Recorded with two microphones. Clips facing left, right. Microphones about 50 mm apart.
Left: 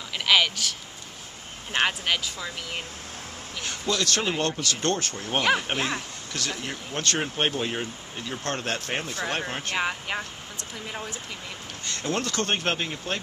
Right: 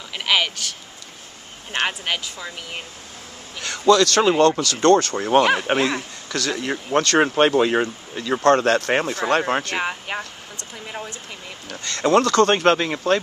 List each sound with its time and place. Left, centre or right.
0.2 s a sound: centre
1.7 s speech: centre
3.6 s speech: right
5.6 s speech: right
9.8 s speech: centre
11.8 s speech: right